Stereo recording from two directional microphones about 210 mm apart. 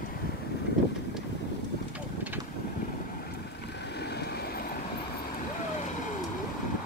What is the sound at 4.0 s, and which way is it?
Vehicle, 50° left (ahead or behind).